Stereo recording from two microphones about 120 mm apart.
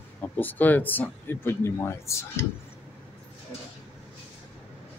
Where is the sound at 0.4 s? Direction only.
15° left (ahead or behind).